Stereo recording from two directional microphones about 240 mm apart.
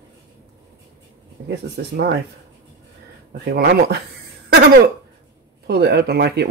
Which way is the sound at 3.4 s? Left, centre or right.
Right.